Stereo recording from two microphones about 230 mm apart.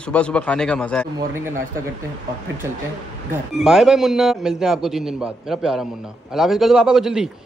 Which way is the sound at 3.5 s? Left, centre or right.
Centre.